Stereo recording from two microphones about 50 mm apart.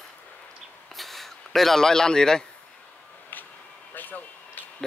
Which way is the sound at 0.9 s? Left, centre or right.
Centre.